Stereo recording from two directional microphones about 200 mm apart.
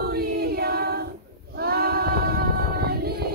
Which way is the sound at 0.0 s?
50° right (ahead or behind).